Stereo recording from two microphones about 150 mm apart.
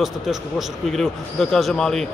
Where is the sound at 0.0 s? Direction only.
Centre (ahead or behind).